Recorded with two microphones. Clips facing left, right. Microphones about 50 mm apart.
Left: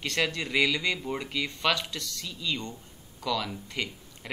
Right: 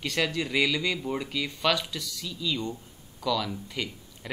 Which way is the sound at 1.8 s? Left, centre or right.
Centre.